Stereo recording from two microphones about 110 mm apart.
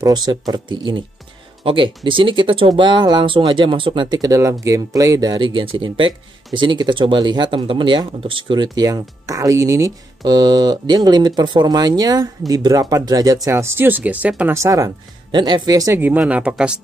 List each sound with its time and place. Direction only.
0.0 s speech: 40° right (ahead or behind)
8.7 s speech: 35° right (ahead or behind); by 14.5 s 15° right (ahead or behind)
14.5 s speech: 30° right (ahead or behind)
15.3 s speech: 45° right (ahead or behind)
16.0 s speech: 15° right (ahead or behind)